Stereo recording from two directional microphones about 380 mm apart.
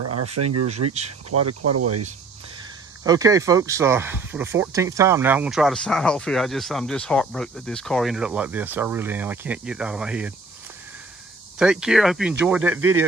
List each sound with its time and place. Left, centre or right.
0.1 s speech: right
3.0 s speech: centre
11.5 s speech: centre